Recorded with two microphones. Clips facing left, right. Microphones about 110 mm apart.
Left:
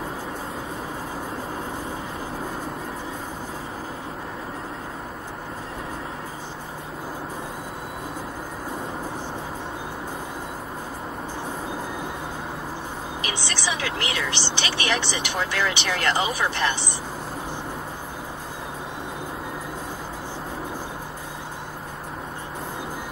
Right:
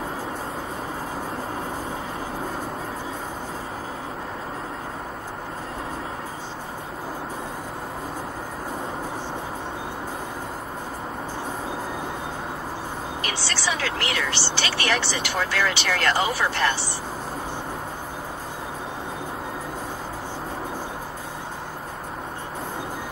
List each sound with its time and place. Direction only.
13.2 s speech: 20° left (ahead or behind)